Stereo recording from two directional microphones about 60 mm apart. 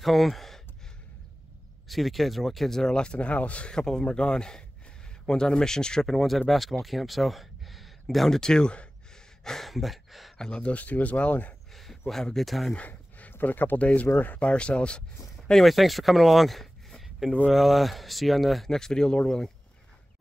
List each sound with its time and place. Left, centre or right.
0.0 s speech: centre
1.9 s speech: centre
9.4 s a sound: centre
10.3 s speech: centre
11.7 s speech: centre
12.7 s a sound: left
13.3 s speech: left
15.6 s speech: centre